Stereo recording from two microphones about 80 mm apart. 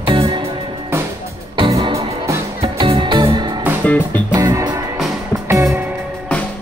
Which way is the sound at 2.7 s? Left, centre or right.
Right.